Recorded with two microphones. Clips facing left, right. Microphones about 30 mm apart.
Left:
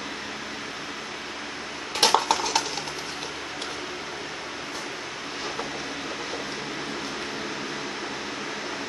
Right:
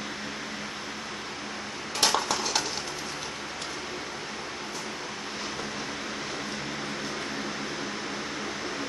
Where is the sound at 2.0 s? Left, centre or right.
Left.